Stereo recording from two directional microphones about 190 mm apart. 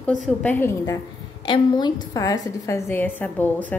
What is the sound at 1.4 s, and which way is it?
A woman's voice, 25° left (ahead or behind).